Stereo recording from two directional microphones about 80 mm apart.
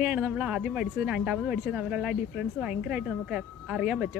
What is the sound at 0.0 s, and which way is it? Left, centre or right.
A woman's voice, centre.